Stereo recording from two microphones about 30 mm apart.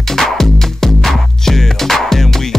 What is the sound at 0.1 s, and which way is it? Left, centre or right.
Music, centre.